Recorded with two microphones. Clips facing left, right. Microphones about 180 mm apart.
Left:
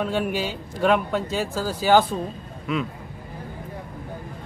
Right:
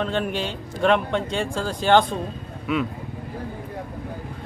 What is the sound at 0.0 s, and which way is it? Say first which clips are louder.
A man's voice: even; 10° left (ahead or behind).